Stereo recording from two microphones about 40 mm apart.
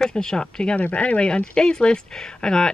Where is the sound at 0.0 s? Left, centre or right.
Centre.